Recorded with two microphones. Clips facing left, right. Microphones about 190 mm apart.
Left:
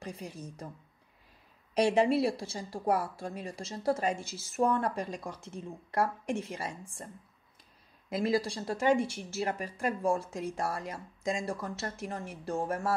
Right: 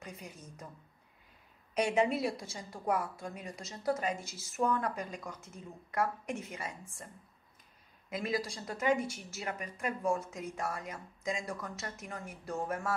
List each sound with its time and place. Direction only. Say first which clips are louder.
0.0 s a woman's voice: left 6 dB; 30° left (ahead or behind)
1.7 s a woman's voice: left 4 dB; 30° left (ahead or behind)
8.1 s a woman's voice: left 6 dB; 30° left (ahead or behind)